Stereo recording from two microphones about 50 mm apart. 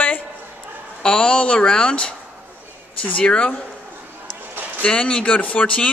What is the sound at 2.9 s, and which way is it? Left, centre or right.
Speech, left.